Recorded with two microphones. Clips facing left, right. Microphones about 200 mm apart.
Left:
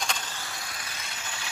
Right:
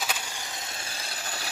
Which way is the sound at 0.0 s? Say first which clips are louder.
Even; 10° right (ahead or behind).